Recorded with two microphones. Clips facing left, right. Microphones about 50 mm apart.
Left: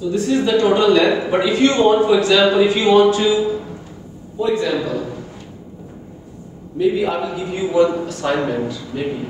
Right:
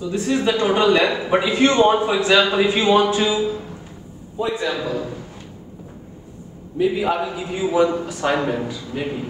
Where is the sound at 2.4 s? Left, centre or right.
Centre.